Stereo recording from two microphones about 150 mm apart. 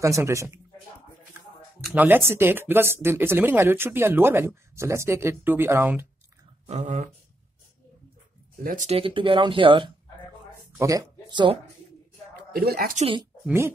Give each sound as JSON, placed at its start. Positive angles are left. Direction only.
{"t": 0.0, "sound": "speech", "side_deg": -20}
{"t": 2.0, "sound": "speech", "side_deg": -15}
{"t": 6.6, "sound": "a sound", "side_deg": -50}
{"t": 8.6, "sound": "speech", "side_deg": -60}
{"t": 8.9, "sound": "speech", "side_deg": -35}
{"t": 10.8, "sound": "speech", "side_deg": -25}
{"t": 12.5, "sound": "speech", "side_deg": -80}
{"t": 12.9, "sound": "speech", "side_deg": -35}